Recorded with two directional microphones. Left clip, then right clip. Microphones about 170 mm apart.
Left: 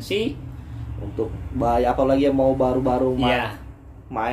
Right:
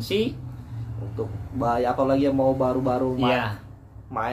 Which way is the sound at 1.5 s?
20° left (ahead or behind).